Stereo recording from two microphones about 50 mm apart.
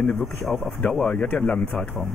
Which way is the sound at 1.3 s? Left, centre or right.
Centre.